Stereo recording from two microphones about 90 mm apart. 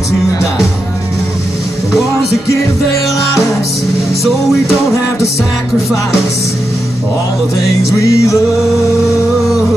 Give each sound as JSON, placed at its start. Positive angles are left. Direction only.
{"t": 8.0, "sound": "music", "side_deg": 35}